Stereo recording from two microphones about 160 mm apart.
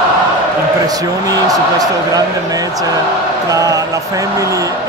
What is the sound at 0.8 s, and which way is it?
Speech, 20° right (ahead or behind).